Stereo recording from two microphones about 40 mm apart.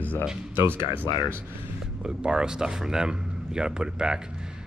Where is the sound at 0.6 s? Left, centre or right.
Right.